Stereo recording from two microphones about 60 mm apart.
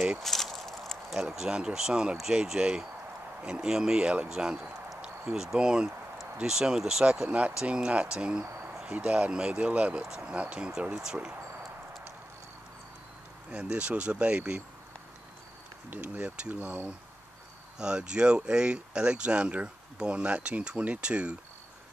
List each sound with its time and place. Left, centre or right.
0.2 s a sound: centre
1.1 s speech: centre
8.9 s speech: right
13.5 s speech: centre
15.9 s speech: right
17.7 s speech: centre